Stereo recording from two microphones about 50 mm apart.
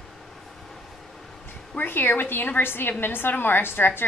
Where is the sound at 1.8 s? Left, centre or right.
Left.